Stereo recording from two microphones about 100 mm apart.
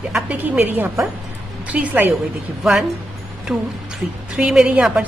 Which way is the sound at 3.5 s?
5° right (ahead or behind).